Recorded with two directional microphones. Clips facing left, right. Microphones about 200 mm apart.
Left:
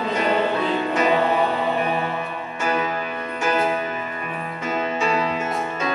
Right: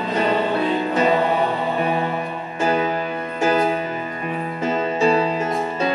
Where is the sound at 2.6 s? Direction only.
35° right (ahead or behind).